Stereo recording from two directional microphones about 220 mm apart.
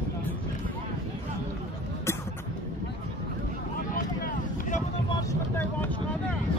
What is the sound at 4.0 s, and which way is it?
Vehicle, 35° left (ahead or behind).